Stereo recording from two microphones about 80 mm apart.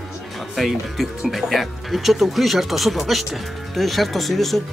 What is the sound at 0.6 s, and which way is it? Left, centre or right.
Speech, centre.